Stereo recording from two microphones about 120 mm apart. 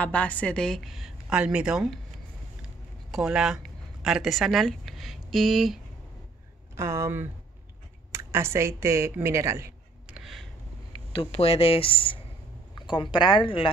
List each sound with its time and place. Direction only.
0.0 s a woman's voice: 10° left (ahead or behind); by 2.0 s 5° right (ahead or behind)
3.1 s speech: 5° right (ahead or behind)
6.8 s speech: 25° right (ahead or behind)
10.0 s a sound: 5° right (ahead or behind)
11.3 s speech: 55° left (ahead or behind)